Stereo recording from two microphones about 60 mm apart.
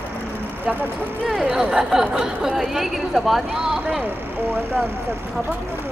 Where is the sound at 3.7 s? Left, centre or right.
Right.